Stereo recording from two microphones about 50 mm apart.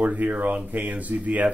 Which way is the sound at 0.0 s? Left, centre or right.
Right.